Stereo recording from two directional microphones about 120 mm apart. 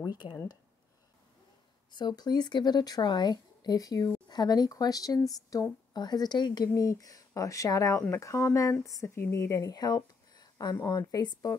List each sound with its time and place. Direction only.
0.0 s speech: 35° left (ahead or behind)
1.9 s a woman's voice: 35° left (ahead or behind)